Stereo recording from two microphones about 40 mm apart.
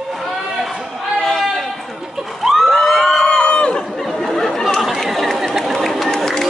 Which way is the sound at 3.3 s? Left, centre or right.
Left.